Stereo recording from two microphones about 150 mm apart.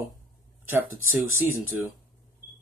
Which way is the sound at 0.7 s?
15° right (ahead or behind).